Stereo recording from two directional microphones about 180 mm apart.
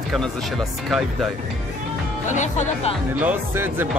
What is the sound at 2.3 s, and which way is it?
Speech, 40° left (ahead or behind).